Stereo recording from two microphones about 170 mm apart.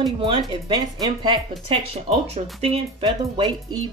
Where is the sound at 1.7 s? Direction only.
35° right (ahead or behind).